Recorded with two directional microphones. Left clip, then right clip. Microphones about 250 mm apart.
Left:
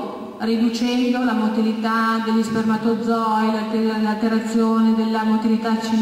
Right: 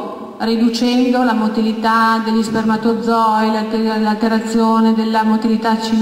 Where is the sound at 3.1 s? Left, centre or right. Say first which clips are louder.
Right 8 dB; centre.